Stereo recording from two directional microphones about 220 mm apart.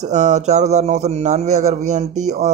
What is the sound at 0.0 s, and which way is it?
Speech, 30° right (ahead or behind).